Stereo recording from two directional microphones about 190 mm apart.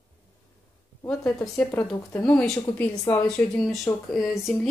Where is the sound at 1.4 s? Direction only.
15° left (ahead or behind).